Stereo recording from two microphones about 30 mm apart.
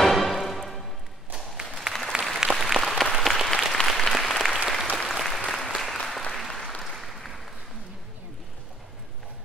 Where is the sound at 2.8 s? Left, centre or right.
Centre.